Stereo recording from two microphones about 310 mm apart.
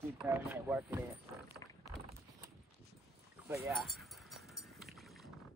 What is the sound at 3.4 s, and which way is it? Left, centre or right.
Rowboat, centre.